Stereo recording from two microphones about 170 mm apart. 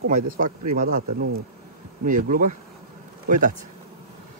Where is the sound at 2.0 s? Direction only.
50° right (ahead or behind).